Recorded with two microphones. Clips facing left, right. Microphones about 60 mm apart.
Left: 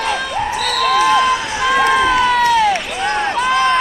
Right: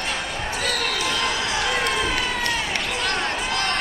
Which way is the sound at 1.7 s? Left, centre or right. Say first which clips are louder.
Left 14 dB; left.